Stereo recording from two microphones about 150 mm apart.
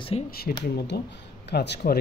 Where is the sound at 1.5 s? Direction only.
90° left.